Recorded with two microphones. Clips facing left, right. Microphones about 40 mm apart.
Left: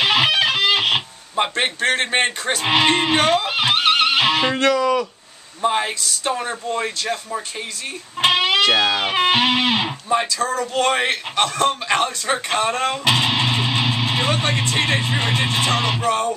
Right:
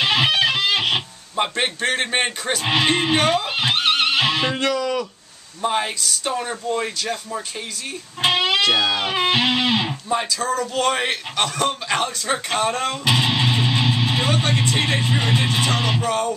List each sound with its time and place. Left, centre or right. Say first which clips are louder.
0.0 s music: left 1 dB; centre
0.8 s speech: left 2 dB; centre
3.9 s music: left 2 dB; left
4.3 s music: left 3 dB; left
4.6 s speech: left 4 dB; centre
8.2 s music: left 2 dB; centre
8.7 s speech: left 2 dB; centre